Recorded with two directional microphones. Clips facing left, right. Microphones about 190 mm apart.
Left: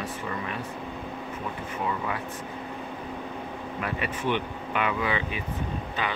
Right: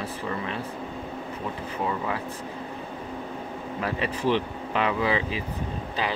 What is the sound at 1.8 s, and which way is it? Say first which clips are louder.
Speech: right 2 dB; 25° right (ahead or behind).